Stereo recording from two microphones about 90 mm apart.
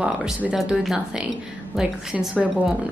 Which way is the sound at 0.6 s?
5° right (ahead or behind).